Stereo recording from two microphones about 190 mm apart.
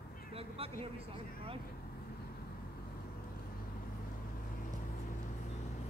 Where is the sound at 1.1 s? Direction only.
30° right (ahead or behind).